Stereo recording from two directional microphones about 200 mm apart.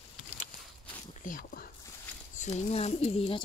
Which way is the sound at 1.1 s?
40° left (ahead or behind).